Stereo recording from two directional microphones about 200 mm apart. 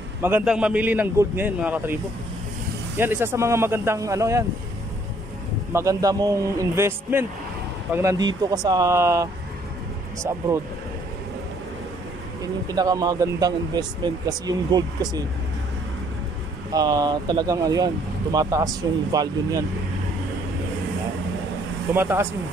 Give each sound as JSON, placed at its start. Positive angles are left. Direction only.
{"t": 0.2, "sound": "a man's voice", "side_deg": -5}
{"t": 3.0, "sound": "a man's voice", "side_deg": -10}
{"t": 5.7, "sound": "a man's voice", "side_deg": -15}
{"t": 12.6, "sound": "speech", "side_deg": -15}
{"t": 16.7, "sound": "speech", "side_deg": -20}
{"t": 21.9, "sound": "a man's voice", "side_deg": -10}